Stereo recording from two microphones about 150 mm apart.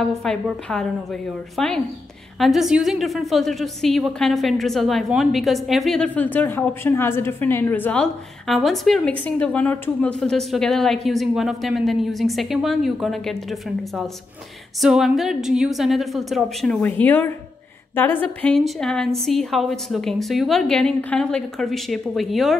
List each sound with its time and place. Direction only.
0.1 s a woman's voice: 5° left (ahead or behind)